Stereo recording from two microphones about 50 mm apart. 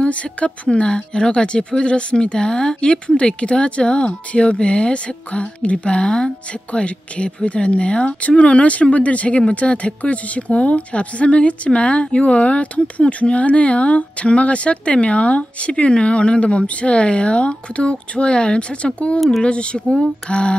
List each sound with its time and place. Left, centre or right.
0.0 s speech: left
19.1 s speech: centre
19.4 s speech: left